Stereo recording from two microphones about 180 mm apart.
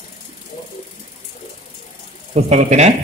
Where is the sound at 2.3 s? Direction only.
40° right (ahead or behind).